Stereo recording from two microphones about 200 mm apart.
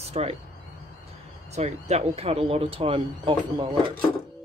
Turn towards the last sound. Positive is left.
turn(degrees=-25)  # may be behind; listen again after turning